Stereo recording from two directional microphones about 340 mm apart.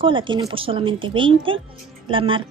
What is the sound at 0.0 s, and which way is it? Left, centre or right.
A woman's voice, centre.